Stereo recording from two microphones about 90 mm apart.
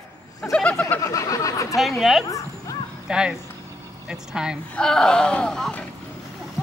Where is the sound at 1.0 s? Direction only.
40° left (ahead or behind).